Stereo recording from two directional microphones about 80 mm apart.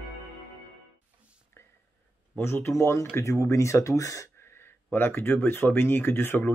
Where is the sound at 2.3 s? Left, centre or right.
Left.